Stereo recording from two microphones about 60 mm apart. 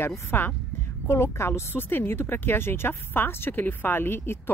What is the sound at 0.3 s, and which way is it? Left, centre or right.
Speech, left.